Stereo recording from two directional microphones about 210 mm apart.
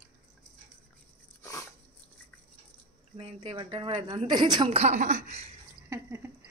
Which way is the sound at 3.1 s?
25° right (ahead or behind).